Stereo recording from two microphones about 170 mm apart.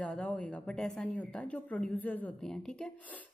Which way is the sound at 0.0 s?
5° left (ahead or behind).